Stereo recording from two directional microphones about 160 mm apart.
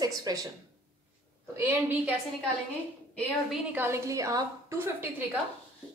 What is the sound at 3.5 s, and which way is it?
A woman's voice, 10° right (ahead or behind).